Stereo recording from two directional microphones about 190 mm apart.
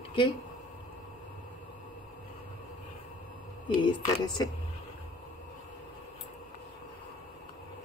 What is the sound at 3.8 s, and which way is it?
Speech, 25° left (ahead or behind).